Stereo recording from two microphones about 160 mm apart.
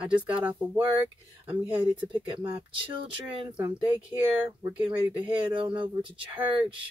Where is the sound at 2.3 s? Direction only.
35° right (ahead or behind).